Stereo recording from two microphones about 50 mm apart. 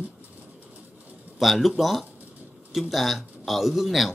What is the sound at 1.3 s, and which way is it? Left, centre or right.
Speech, centre.